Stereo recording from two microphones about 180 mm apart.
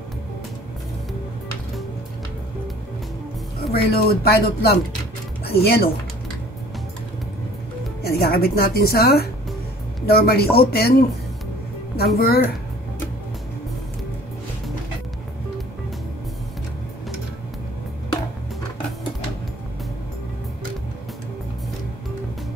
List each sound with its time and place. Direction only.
3.5 s speech: 60° left (ahead or behind)
8.0 s speech: 60° left (ahead or behind)
12.2 s speech: 60° left (ahead or behind)